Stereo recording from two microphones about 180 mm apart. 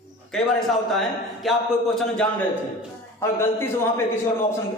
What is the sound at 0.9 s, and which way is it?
A man's voice, centre (ahead or behind).